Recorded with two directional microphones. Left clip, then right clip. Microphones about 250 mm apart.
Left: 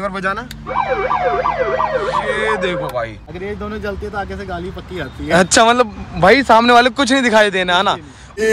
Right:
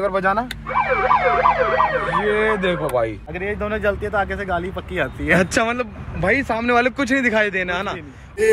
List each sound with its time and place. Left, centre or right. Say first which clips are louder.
0.1 s speech: right 2 dB; centre
0.7 s speech: left 1 dB; centre
2.3 s speech: left 1 dB; centre
3.3 s speech: right 2 dB; centre
6.7 s speech: left 6 dB; centre